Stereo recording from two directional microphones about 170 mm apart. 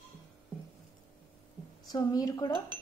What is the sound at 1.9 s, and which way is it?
Speech, 20° left (ahead or behind).